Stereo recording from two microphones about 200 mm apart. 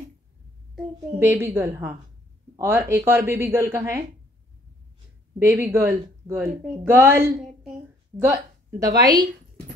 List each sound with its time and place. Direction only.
1.2 s a woman's voice: 10° right (ahead or behind)
5.4 s a woman's voice: 10° right (ahead or behind)